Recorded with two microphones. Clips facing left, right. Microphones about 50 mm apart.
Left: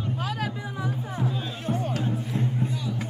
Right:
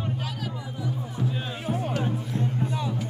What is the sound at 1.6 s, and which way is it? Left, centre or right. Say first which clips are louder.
Music: left 1 dB; centre.